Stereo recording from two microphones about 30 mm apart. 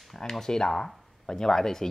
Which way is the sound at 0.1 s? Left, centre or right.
Centre.